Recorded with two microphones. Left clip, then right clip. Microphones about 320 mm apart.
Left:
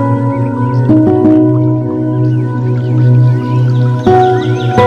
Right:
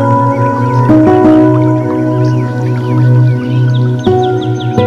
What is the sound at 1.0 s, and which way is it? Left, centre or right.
Music, right.